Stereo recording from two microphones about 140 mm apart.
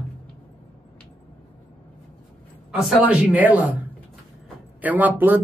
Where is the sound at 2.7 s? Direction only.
5° right (ahead or behind).